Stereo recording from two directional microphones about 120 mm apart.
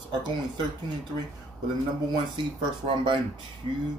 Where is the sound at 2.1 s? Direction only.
45° right (ahead or behind).